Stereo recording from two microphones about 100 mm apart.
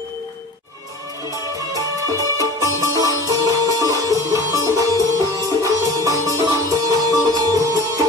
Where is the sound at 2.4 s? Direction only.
35° right (ahead or behind).